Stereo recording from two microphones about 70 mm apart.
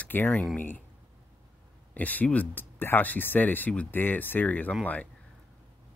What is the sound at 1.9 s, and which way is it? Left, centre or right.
Speech, left.